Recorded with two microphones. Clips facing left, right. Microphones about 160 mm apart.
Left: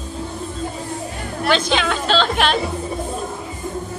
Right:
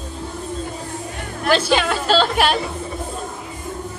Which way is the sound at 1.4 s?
5° right (ahead or behind).